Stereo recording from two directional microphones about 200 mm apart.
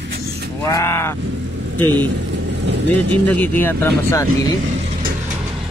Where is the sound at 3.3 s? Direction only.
10° left (ahead or behind).